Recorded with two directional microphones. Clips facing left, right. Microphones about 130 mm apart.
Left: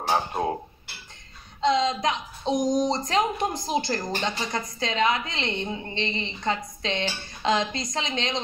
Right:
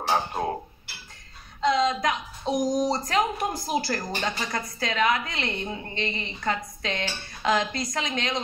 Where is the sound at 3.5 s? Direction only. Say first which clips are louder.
Left 1 dB; 5° right (ahead or behind).